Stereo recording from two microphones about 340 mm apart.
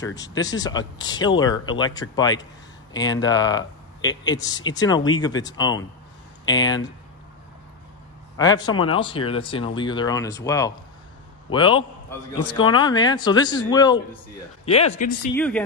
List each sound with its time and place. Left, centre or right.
0.0 s speech: centre
8.4 s speech: centre
15.3 s speech: centre